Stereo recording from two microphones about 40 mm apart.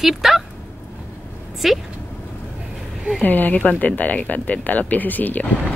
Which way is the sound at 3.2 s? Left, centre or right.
Left.